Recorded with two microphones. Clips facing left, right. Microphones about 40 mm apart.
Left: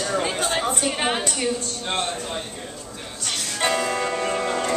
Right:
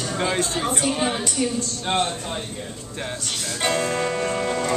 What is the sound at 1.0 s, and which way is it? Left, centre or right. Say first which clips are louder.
Speech: even; left.